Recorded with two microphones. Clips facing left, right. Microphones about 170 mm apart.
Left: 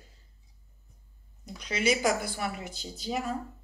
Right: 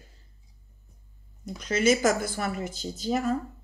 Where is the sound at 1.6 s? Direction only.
45° right (ahead or behind).